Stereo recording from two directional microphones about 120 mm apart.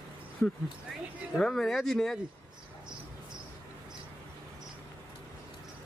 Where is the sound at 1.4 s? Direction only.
Centre (ahead or behind).